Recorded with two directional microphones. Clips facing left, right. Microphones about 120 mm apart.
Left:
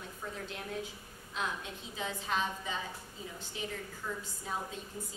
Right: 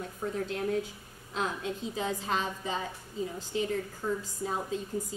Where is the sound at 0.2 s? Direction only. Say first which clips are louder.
Right 10 dB; 35° right (ahead or behind).